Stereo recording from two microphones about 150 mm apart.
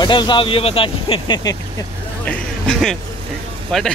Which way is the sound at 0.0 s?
30° left (ahead or behind).